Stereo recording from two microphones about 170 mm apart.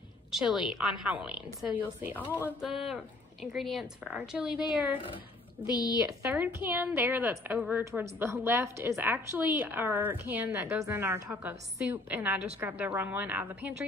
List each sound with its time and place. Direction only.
0.3 s a woman's voice: 5° right (ahead or behind)
2.2 s speech: 10° left (ahead or behind)
2.6 s speech: centre (ahead or behind)
5.6 s a woman's voice: 25° right (ahead or behind)
6.2 s a woman's voice: 10° right (ahead or behind)